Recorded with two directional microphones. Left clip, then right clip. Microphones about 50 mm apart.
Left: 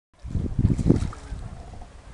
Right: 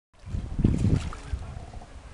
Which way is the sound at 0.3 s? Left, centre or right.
Left.